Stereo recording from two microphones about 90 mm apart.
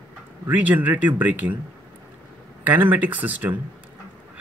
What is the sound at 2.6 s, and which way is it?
Speech, 20° right (ahead or behind).